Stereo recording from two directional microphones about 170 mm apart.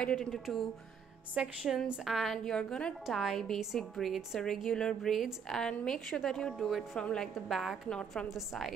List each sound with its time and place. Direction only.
0.0 s a woman's voice: centre (ahead or behind)